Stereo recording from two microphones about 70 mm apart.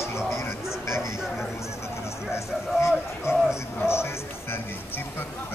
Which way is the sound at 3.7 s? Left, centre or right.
Left.